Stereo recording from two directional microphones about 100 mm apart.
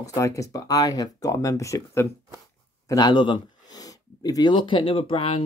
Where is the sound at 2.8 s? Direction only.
40° left (ahead or behind); by 5.4 s 65° left (ahead or behind).